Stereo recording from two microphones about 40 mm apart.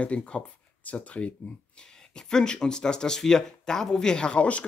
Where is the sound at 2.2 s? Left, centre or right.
Centre.